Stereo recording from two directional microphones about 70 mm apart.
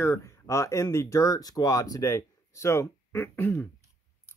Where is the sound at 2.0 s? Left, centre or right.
Left.